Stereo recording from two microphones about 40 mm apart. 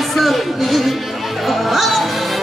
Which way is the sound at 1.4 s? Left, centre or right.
Centre.